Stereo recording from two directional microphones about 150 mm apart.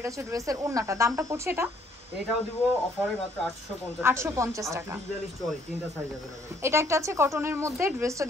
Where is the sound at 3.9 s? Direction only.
15° right (ahead or behind).